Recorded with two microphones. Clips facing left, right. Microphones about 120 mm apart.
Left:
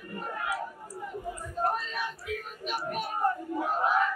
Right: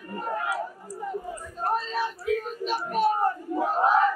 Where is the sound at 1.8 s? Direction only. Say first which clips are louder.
Right 6 dB; 30° right (ahead or behind).